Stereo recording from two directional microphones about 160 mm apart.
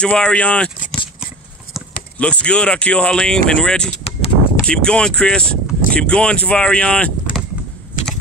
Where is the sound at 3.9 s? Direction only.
40° left (ahead or behind).